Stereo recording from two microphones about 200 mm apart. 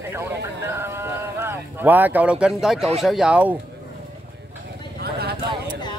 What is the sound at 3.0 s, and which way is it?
Speech, centre (ahead or behind).